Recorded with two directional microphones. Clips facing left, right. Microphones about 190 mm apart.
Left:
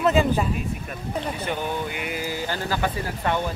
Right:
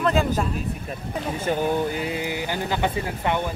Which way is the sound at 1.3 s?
45° right (ahead or behind).